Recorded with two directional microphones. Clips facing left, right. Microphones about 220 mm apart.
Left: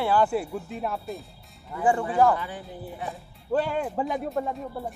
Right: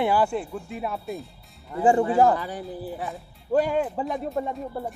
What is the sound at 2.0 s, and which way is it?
Speech, 30° right (ahead or behind).